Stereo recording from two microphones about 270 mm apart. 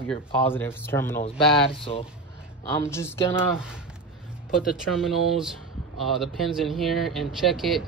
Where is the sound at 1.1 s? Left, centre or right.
Centre.